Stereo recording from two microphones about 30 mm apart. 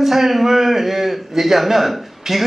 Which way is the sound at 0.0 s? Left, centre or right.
Centre.